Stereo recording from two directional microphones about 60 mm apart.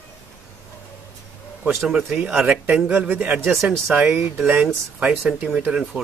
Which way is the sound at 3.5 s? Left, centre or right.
Centre.